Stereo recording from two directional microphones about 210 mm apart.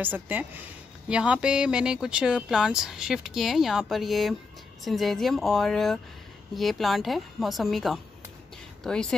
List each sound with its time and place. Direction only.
0.0 s speech: 10° right (ahead or behind)